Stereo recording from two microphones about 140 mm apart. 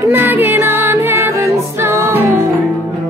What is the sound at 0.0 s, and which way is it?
Music, 15° right (ahead or behind).